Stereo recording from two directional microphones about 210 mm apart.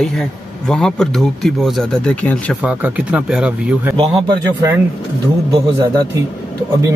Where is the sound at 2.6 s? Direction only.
5° right (ahead or behind).